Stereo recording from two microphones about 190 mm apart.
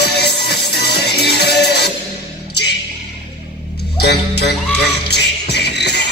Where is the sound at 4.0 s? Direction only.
60° left (ahead or behind).